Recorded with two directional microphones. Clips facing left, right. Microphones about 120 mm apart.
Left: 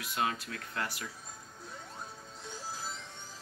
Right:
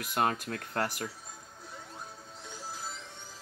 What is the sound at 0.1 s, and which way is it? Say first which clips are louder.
Speech: right 4 dB; 50° right (ahead or behind).